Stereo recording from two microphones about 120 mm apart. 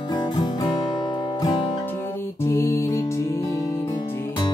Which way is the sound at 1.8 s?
20° left (ahead or behind).